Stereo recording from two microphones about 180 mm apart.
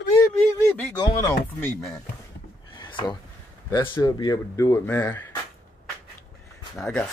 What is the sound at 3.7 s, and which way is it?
Speech, 25° left (ahead or behind).